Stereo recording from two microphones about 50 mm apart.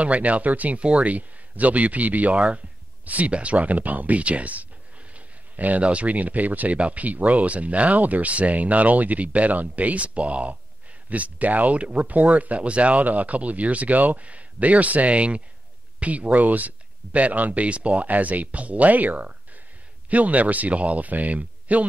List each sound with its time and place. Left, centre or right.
0.0 s speech: right